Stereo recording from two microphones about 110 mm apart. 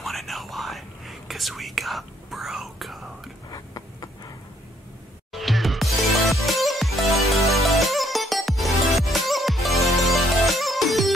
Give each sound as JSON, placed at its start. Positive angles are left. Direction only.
{"t": 0.0, "sound": "whispering", "side_deg": 0}
{"t": 3.5, "sound": "a sound", "side_deg": 35}
{"t": 5.3, "sound": "music", "side_deg": 0}